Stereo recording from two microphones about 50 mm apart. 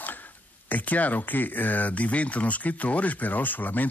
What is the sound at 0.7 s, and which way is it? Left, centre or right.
Speech, left.